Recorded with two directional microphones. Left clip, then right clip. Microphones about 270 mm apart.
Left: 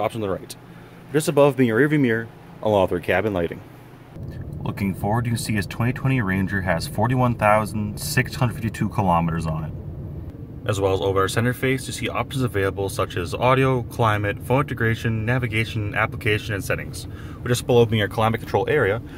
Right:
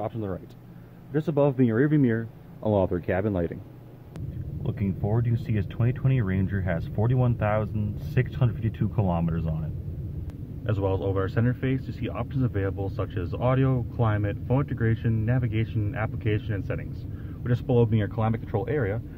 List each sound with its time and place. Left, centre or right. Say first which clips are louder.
0.0 s speech: left 8 dB; left; by 3.5 s centre
4.6 s speech: left 6 dB; centre
10.7 s speech: left 7 dB; centre